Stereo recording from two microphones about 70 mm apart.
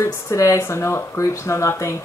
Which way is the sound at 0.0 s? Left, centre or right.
Left.